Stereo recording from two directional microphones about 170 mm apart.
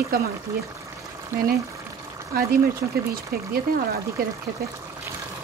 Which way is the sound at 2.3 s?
60° right (ahead or behind).